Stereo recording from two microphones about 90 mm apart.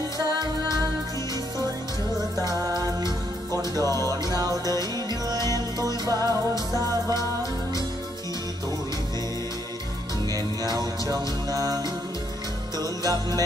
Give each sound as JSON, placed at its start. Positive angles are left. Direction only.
{"t": 0.3, "sound": "music", "side_deg": -50}
{"t": 2.4, "sound": "music", "side_deg": -45}
{"t": 5.5, "sound": "music", "side_deg": 35}
{"t": 6.0, "sound": "music", "side_deg": -45}
{"t": 10.3, "sound": "music", "side_deg": -45}
{"t": 12.7, "sound": "jingle bell", "side_deg": -45}